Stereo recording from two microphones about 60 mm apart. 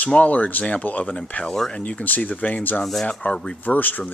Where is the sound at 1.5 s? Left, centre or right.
Centre.